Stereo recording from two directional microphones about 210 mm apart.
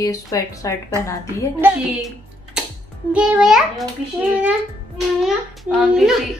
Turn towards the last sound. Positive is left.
turn(degrees=0)  # may be behind; listen again after turning